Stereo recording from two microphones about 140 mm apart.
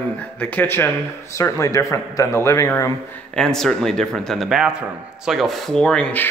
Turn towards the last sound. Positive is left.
turn(degrees=10)  # may be behind; listen again after turning